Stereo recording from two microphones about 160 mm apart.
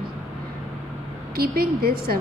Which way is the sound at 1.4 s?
70° right (ahead or behind).